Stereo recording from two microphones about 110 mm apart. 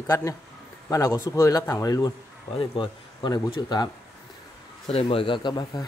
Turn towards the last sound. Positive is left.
turn(degrees=40)  # may be behind; listen again after turning